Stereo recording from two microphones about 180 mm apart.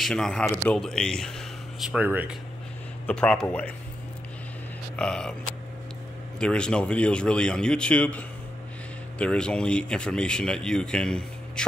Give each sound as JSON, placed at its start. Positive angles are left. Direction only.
{"t": 0.0, "sound": "speech", "side_deg": 5}
{"t": 1.9, "sound": "speech", "side_deg": -10}
{"t": 3.1, "sound": "speech", "side_deg": 5}
{"t": 4.9, "sound": "speech", "side_deg": 5}
{"t": 6.4, "sound": "speech", "side_deg": 5}